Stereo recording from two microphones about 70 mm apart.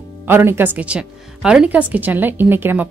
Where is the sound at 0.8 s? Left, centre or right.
Centre.